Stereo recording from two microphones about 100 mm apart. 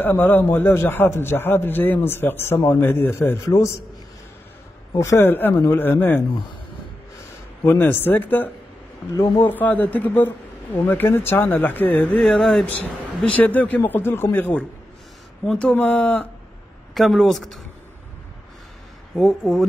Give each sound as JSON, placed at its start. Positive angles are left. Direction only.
{"t": 0.0, "sound": "a man's voice", "side_deg": 20}
{"t": 4.9, "sound": "speech", "side_deg": 30}
{"t": 5.2, "sound": "a man's voice", "side_deg": 20}
{"t": 7.6, "sound": "a man's voice", "side_deg": 20}
{"t": 12.2, "sound": "speech", "side_deg": 5}
{"t": 16.9, "sound": "a man's voice", "side_deg": 0}
{"t": 19.1, "sound": "a man's voice", "side_deg": 5}